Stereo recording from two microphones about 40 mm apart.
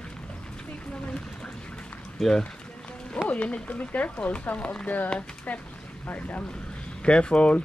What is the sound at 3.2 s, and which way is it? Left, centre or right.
A woman's voice, left.